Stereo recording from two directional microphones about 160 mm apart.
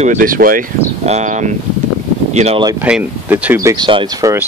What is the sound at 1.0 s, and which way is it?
Speech, 45° right (ahead or behind).